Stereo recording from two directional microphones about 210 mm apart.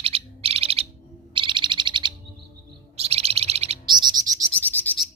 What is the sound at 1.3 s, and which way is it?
Owl, 25° right (ahead or behind).